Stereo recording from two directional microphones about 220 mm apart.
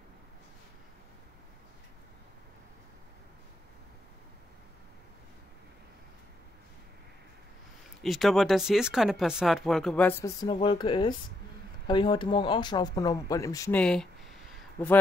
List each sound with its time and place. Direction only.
8.0 s speech: centre (ahead or behind)